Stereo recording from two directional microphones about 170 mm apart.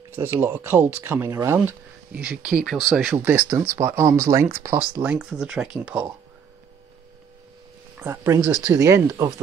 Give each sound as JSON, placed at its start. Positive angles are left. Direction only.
{"t": 0.1, "sound": "speech", "side_deg": -15}
{"t": 8.0, "sound": "speech", "side_deg": -15}